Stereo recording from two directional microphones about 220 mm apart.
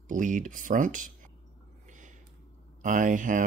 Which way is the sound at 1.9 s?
35° right (ahead or behind).